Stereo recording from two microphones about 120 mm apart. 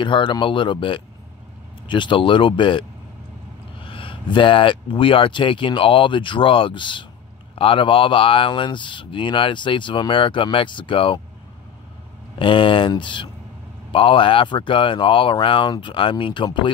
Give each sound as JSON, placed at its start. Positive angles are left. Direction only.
{"t": 0.0, "sound": "speech", "side_deg": 45}
{"t": 3.8, "sound": "speech", "side_deg": 45}
{"t": 12.4, "sound": "speech", "side_deg": 45}